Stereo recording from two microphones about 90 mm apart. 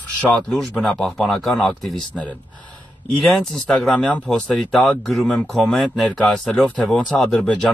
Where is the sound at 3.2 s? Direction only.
Centre (ahead or behind).